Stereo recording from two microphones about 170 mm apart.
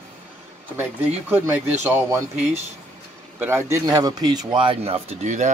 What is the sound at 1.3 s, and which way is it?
Speech, 10° right (ahead or behind).